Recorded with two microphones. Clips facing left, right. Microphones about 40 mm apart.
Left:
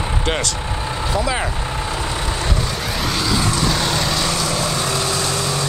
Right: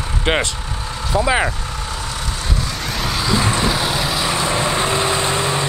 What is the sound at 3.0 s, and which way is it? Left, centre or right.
Vehicle, centre.